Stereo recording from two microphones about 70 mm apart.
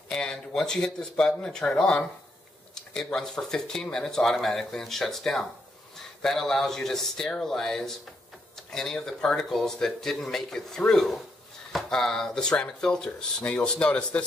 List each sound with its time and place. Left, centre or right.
0.1 s speech: centre